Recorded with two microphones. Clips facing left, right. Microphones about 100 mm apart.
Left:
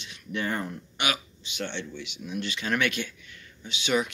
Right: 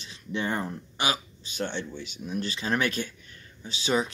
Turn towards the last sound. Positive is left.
turn(degrees=-35)  # may be behind; listen again after turning